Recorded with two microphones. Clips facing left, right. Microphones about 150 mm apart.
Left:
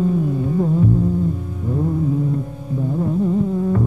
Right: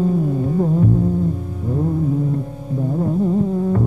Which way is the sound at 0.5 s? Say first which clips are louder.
Even; 45° right (ahead or behind).